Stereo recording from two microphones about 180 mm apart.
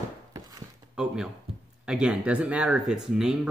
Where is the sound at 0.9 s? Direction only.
5° right (ahead or behind).